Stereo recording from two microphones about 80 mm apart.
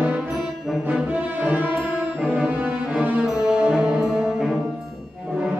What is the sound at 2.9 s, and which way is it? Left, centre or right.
Music, centre.